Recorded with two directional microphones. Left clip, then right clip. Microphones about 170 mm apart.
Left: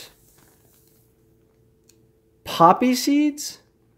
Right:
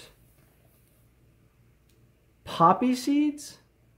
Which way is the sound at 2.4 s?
35° left (ahead or behind).